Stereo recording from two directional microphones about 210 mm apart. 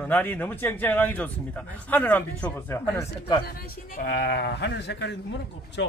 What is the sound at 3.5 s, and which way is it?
Speech, 45° left (ahead or behind).